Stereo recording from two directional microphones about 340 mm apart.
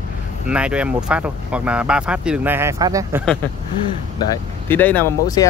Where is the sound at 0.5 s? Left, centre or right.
Centre.